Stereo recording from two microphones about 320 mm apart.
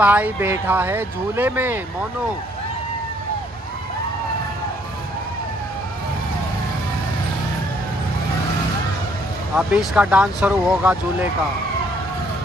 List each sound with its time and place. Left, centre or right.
0.0 s speech: centre
9.6 s speech: centre